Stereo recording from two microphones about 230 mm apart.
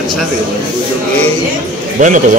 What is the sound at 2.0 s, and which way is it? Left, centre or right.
Speech, right.